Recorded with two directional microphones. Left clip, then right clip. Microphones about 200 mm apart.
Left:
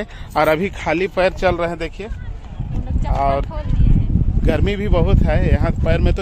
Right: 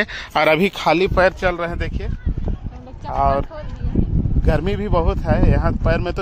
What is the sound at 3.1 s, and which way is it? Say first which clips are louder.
Speech: right 1 dB; 20° right (ahead or behind).